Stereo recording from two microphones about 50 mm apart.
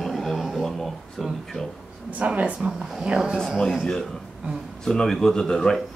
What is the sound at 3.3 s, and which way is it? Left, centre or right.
Speech, centre.